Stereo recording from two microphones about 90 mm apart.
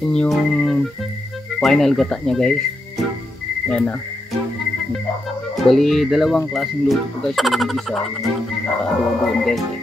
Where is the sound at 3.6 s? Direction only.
15° left (ahead or behind).